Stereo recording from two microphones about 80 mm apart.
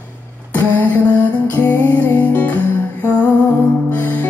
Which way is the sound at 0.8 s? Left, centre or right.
Left.